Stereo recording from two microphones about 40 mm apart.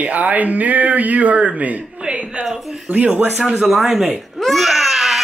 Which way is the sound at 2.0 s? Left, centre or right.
Right.